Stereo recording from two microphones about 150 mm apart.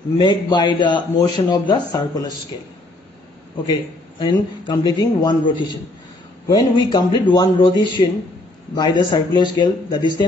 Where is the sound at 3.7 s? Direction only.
30° left (ahead or behind).